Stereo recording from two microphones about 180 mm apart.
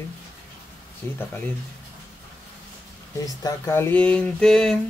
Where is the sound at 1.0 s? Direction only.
15° left (ahead or behind).